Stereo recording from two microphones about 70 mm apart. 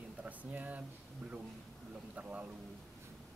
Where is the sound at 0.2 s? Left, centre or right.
Right.